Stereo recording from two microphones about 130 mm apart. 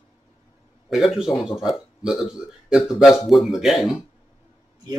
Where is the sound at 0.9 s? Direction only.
Centre (ahead or behind).